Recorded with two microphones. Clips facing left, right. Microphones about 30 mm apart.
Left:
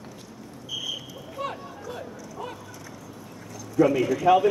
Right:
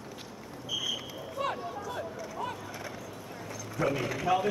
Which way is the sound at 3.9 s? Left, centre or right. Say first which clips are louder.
Left 7 dB; right.